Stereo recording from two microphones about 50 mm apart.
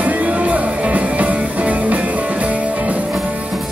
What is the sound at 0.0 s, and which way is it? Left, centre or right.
Music, right.